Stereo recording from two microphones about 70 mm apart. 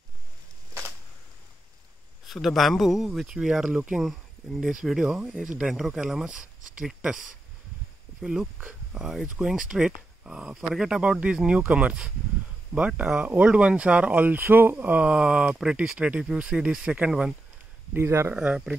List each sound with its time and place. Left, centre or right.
2.2 s speech: centre
17.9 s speech: right
18.3 s speech: centre